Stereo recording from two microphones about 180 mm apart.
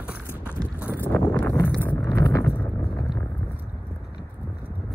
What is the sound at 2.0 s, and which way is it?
Clip-clop, 15° left (ahead or behind).